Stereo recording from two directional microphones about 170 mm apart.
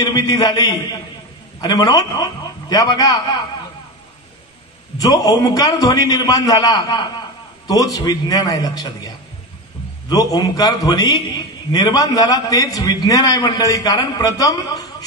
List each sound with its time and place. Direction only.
0.0 s a man's voice: 20° left (ahead or behind)
4.9 s a man's voice: 20° left (ahead or behind)